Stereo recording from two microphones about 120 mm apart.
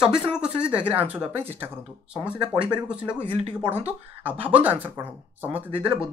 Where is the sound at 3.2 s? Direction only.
50° right (ahead or behind).